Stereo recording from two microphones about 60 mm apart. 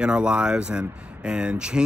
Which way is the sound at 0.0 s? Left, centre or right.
Centre.